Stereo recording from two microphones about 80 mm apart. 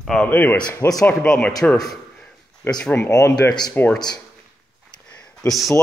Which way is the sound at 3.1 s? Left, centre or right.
Left.